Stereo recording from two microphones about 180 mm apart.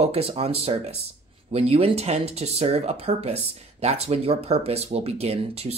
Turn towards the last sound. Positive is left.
turn(degrees=-35)  # may be behind; listen again after turning